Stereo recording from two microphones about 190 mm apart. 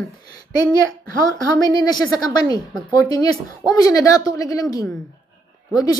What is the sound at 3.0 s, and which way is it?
A woman's voice, 20° left (ahead or behind).